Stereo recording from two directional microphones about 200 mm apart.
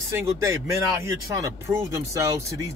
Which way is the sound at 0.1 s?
15° right (ahead or behind).